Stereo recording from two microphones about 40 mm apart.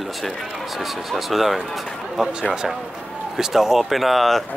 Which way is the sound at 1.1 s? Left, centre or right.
Centre.